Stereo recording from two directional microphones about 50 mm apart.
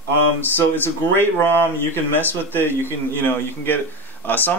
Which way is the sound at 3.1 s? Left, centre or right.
Left.